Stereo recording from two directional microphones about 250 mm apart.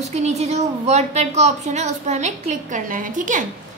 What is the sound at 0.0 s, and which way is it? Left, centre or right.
A woman's voice, right.